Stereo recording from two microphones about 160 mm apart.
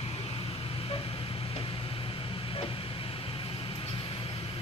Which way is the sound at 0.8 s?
35° left (ahead or behind).